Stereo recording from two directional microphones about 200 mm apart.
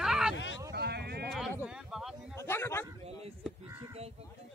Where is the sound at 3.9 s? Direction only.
30° right (ahead or behind).